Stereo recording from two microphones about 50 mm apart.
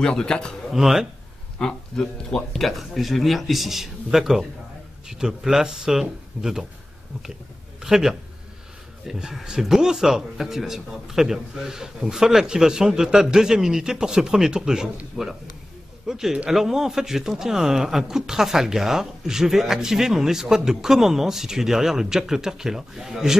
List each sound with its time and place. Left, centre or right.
0.0 s a man's voice: centre
0.7 s speech: centre
1.6 s a man's voice: centre
7.8 s speech: centre